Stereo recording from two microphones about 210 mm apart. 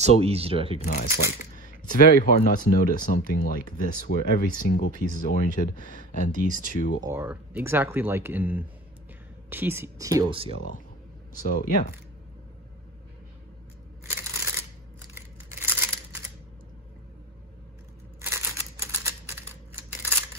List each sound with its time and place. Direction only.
0.0 s speech: 30° right (ahead or behind)
0.8 s speech: 35° left (ahead or behind)
7.0 s speech: 10° right (ahead or behind)
11.4 s speech: 40° left (ahead or behind)
14.1 s a sound: 10° right (ahead or behind)
18.2 s typewriter: 15° right (ahead or behind)